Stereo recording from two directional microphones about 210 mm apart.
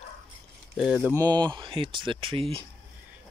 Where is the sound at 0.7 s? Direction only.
Centre (ahead or behind).